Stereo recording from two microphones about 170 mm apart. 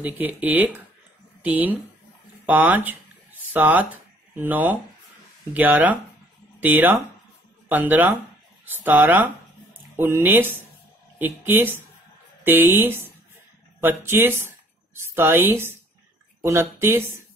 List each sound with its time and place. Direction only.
0.0 s a woman's voice: 10° right (ahead or behind)